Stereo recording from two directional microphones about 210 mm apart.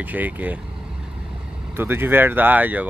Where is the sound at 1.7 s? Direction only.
10° right (ahead or behind).